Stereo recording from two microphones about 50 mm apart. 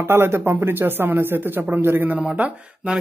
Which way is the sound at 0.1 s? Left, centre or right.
Right.